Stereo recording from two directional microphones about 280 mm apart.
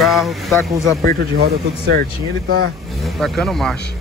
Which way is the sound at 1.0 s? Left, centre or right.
Right.